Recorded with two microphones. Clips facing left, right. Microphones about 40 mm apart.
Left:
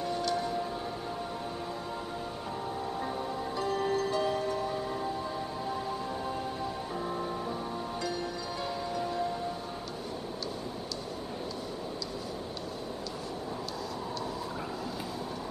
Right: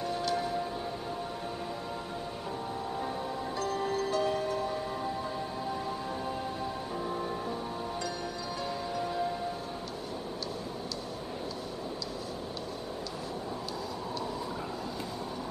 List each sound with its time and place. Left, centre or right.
0.0 s music: centre
3.5 s music: centre
7.1 s music: centre
8.9 s wind chime: centre